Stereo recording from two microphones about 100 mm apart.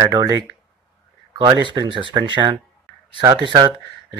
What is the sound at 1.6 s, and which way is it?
Speech, 55° right (ahead or behind).